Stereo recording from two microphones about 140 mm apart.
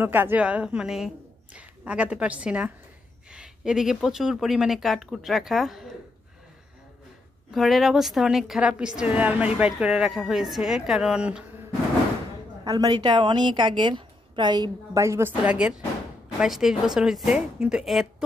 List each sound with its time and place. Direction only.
0.0 s a woman's voice: 15° right (ahead or behind)
7.5 s speech: centre (ahead or behind)
12.6 s a woman's voice: 25° right (ahead or behind); by 18.0 s 5° right (ahead or behind)